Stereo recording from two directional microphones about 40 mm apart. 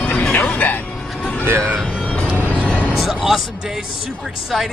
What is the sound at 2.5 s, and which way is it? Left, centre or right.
Music, left.